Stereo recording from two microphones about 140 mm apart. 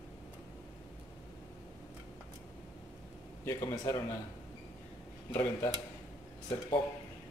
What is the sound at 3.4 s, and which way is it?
Speech, 20° left (ahead or behind).